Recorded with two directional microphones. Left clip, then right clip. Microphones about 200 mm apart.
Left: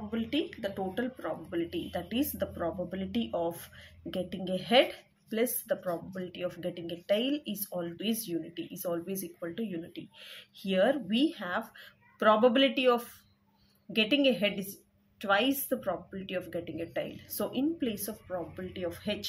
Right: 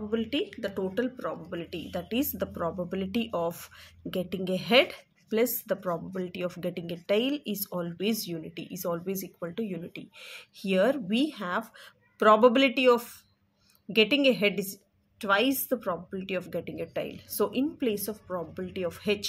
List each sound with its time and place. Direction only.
0.1 s a woman's voice: 30° right (ahead or behind)